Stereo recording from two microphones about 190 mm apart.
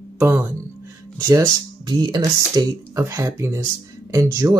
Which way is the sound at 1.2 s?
20° right (ahead or behind).